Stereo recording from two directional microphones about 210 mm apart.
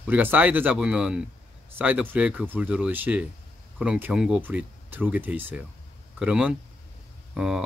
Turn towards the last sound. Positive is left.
turn(degrees=-5)  # may be behind; listen again after turning